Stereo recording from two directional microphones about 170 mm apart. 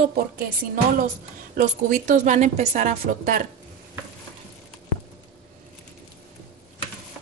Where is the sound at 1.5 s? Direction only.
50° right (ahead or behind).